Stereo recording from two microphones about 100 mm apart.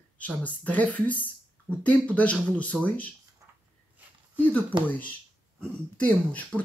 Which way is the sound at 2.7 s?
10° right (ahead or behind).